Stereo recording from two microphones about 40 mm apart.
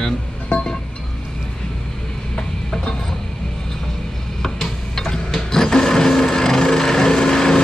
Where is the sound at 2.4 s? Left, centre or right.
Centre.